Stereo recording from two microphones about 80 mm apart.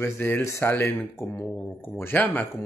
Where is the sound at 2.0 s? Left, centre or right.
Left.